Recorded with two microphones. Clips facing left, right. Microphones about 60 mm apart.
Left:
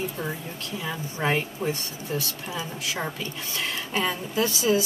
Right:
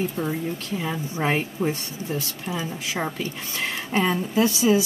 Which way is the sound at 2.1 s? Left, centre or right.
Right.